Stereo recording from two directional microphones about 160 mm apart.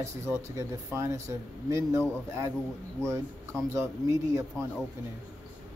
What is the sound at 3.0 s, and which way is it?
Speech, 15° right (ahead or behind).